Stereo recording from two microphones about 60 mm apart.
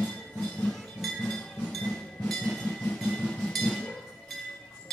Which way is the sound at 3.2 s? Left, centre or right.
Centre.